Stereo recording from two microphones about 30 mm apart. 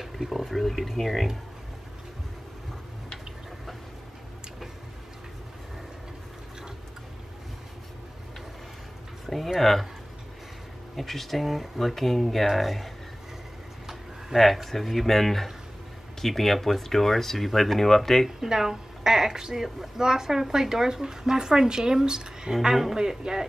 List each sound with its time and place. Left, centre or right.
0.0 s a sound: centre
0.5 s speech: centre
9.2 s a sound: centre
9.6 s speech: centre
11.0 s speech: centre
11.4 s a woman's voice: centre
11.8 s speech: centre
14.3 s speech: centre
18.4 s a woman's voice: centre